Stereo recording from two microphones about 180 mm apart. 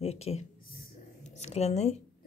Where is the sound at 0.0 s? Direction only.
35° left (ahead or behind).